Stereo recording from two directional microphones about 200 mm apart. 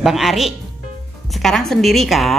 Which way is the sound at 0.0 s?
Centre (ahead or behind).